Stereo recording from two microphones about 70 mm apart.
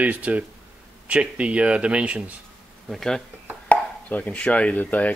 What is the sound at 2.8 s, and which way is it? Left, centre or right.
Speech, centre.